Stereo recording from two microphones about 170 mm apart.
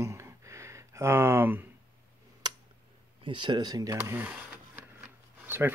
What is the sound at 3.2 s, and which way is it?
Speech, 30° right (ahead or behind).